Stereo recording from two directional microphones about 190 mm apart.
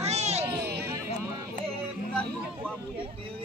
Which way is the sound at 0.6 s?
60° right (ahead or behind).